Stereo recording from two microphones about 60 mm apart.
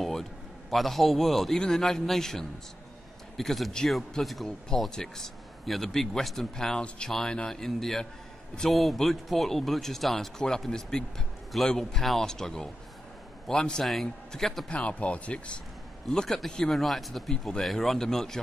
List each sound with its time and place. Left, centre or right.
0.0 s a sound: centre
1.6 s speech: centre
14.7 s speech: centre
16.1 s speech: centre